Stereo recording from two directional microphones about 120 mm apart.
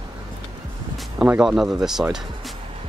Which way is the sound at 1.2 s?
5° right (ahead or behind).